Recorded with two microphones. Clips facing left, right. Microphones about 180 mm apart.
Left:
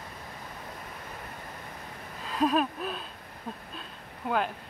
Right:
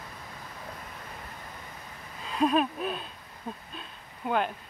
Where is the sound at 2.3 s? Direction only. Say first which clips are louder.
Right 1 dB; centre (ahead or behind).